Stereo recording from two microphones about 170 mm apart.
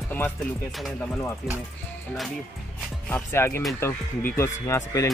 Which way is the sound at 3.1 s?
15° left (ahead or behind).